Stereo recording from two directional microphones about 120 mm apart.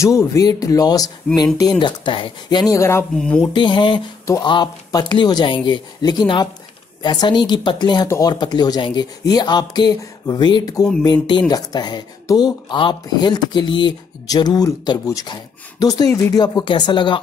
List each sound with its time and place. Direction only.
0.0 s speech: 25° left (ahead or behind); by 2.6 s 45° left (ahead or behind)
2.6 s speech: 25° left (ahead or behind)
3.2 s speech: 5° left (ahead or behind)
3.5 s speech: 40° left (ahead or behind)